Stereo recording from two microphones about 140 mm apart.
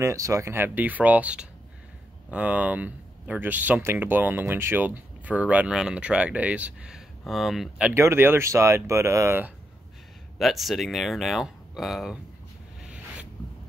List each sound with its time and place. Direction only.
0.0 s speech: 20° right (ahead or behind); by 7.9 s centre (ahead or behind)
7.9 s speech: 20° right (ahead or behind)
10.4 s speech: centre (ahead or behind)
12.8 s a sound: 5° right (ahead or behind)